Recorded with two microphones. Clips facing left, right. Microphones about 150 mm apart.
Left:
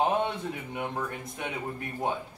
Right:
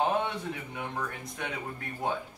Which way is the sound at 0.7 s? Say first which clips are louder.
Left 3 dB; 20° left (ahead or behind).